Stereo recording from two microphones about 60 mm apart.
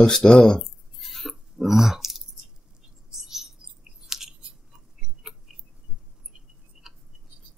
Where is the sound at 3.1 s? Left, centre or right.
Centre.